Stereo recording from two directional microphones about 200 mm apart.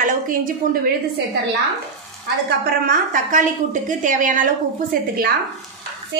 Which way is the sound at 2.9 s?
40° right (ahead or behind).